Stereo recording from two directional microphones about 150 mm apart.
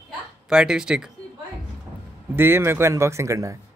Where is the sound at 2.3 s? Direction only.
15° right (ahead or behind).